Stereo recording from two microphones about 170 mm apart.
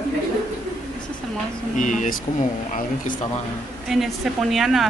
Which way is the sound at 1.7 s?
50° left (ahead or behind).